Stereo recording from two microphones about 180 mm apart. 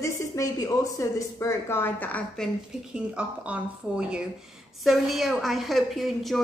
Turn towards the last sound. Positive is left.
turn(degrees=0)  # may be behind; listen again after turning